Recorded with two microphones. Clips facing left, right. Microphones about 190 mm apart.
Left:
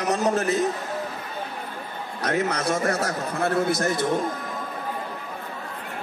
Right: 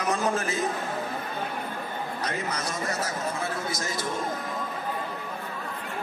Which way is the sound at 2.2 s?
65° left (ahead or behind).